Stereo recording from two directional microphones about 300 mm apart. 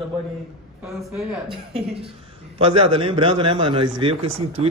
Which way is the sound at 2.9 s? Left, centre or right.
Centre.